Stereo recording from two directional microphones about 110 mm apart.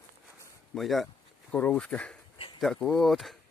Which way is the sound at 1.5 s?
15° left (ahead or behind).